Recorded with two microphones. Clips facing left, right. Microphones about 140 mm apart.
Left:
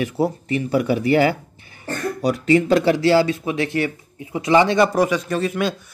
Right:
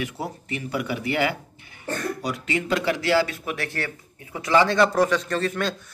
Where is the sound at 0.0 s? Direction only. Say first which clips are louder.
Left 9 dB; 35° left (ahead or behind).